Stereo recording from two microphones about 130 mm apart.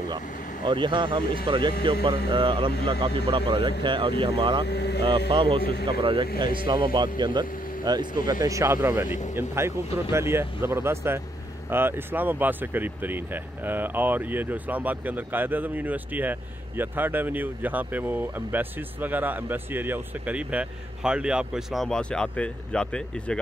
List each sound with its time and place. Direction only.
0.7 s speech: 40° right (ahead or behind); by 23.4 s 5° left (ahead or behind)